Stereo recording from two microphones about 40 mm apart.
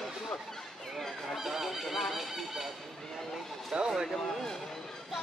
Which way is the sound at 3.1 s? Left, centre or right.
Centre.